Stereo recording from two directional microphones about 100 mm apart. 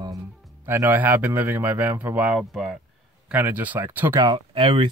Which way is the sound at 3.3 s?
20° right (ahead or behind).